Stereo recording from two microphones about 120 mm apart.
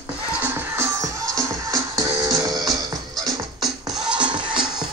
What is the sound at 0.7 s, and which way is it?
Music, 25° right (ahead or behind).